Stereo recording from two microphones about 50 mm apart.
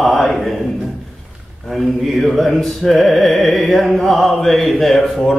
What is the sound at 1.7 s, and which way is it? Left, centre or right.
Music, centre.